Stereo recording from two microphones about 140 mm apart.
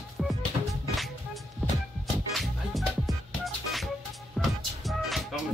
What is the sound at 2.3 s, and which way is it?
Music, centre (ahead or behind).